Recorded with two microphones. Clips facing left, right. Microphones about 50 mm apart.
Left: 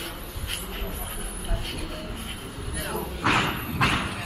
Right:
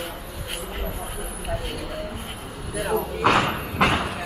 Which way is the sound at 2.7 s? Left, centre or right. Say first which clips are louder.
Right 8 dB; right.